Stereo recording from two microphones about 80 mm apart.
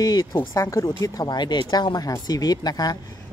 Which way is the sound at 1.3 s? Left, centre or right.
Left.